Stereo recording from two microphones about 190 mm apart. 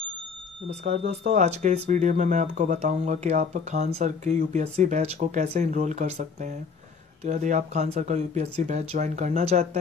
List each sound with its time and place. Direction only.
0.7 s speech: 35° right (ahead or behind)